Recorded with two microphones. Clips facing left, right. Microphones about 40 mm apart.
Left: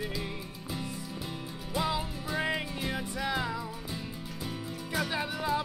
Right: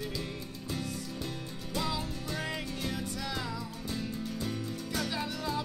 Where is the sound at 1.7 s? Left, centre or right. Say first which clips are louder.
Left 3 dB; centre.